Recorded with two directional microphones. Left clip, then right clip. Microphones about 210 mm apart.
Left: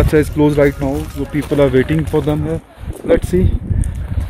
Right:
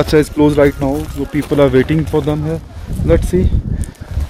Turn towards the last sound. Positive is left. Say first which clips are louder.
# even
turn(degrees=5)  # may be behind; listen again after turning